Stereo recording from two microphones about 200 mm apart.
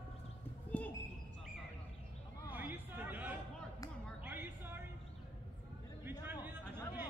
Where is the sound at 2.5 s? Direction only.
10° right (ahead or behind).